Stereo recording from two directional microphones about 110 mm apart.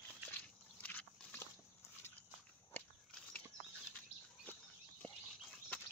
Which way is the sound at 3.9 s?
15° left (ahead or behind).